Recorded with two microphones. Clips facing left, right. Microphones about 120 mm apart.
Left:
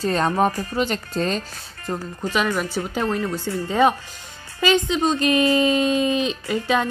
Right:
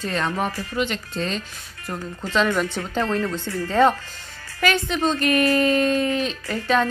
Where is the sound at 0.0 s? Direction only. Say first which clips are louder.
Left 5 dB; 35° left (ahead or behind).